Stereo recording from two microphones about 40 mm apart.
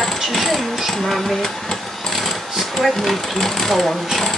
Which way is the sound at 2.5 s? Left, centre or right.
Centre.